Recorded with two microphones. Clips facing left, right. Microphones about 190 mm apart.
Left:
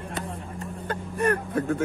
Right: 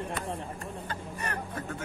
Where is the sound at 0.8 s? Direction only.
55° left (ahead or behind).